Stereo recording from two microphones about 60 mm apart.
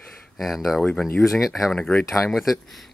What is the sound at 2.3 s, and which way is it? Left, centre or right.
Speech, centre.